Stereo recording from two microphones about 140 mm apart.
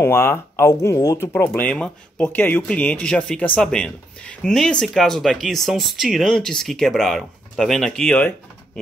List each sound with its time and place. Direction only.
0.0 s speech: 15° left (ahead or behind)
1.5 s speech: 10° left (ahead or behind)